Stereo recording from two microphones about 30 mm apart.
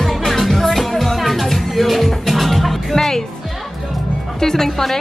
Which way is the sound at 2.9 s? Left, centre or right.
Centre.